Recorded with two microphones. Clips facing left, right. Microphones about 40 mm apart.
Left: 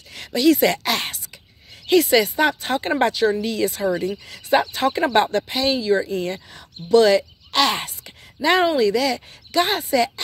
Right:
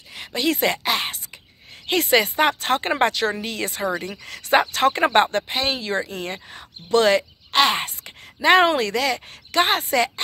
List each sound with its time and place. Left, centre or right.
0.3 s speech: right
0.8 s speech: centre
1.9 s speech: right
8.0 s a sound: right
8.6 s speech: right